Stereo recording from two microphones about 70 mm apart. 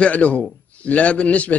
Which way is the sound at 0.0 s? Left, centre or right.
Centre.